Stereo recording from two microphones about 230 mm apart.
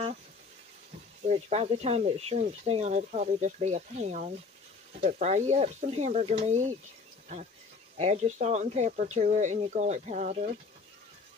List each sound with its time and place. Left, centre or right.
1.2 s speech: right
8.0 s speech: right